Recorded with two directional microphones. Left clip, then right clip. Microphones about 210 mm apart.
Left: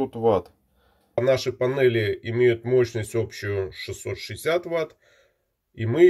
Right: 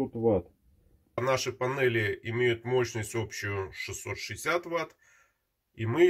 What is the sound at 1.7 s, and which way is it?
Speech, 60° right (ahead or behind).